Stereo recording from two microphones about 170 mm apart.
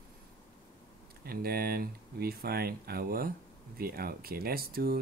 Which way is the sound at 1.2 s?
65° right (ahead or behind).